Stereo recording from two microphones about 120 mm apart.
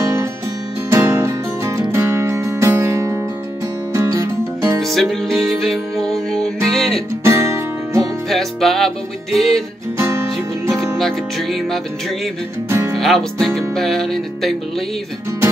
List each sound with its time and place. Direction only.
0.8 s music: 20° right (ahead or behind)
4.8 s music: centre (ahead or behind)
7.2 s music: 25° right (ahead or behind)
8.3 s music: centre (ahead or behind)
9.9 s music: 20° right (ahead or behind)
11.0 s music: centre (ahead or behind)
12.6 s speech: 20° right (ahead or behind)
12.9 s music: centre (ahead or behind)